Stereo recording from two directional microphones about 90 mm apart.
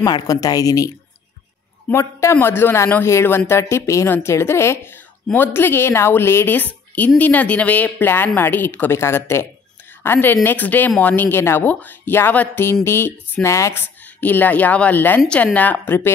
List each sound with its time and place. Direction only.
0.0 s speech: 45° left (ahead or behind); by 16.1 s 20° left (ahead or behind)